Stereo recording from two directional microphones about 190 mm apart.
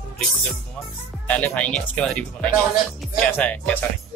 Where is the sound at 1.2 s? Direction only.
5° left (ahead or behind).